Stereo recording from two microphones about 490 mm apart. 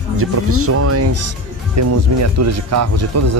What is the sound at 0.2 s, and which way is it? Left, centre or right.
Speech, right.